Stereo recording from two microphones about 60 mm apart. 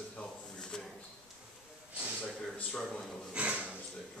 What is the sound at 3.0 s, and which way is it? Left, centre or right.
Speech, centre.